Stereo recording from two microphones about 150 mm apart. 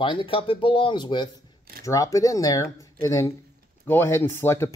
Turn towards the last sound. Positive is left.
turn(degrees=15)  # may be behind; listen again after turning